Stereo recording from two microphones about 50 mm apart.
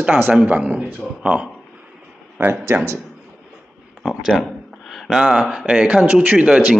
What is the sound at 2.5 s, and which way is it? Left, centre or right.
Speech, right.